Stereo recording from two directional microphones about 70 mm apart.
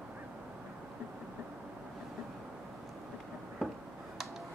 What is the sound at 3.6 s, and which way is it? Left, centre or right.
Finger snapping, centre.